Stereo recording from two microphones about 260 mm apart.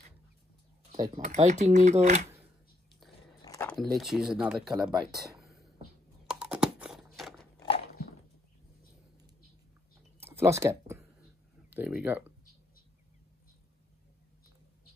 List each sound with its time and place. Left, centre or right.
0.9 s speech: centre
1.2 s speech: right
3.0 s biting: centre
3.4 s a sound: centre
3.7 s speech: centre
5.4 s a sound: centre
7.5 s biting: centre
10.2 s a sound: centre
11.7 s speech: centre